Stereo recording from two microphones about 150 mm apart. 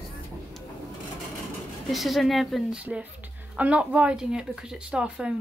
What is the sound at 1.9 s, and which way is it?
A woman's voice, centre (ahead or behind).